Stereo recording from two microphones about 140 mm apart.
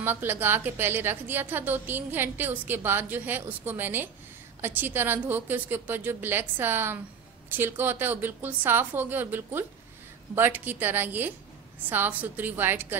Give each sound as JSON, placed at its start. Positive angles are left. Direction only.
{"t": 0.0, "sound": "a woman's voice", "side_deg": -15}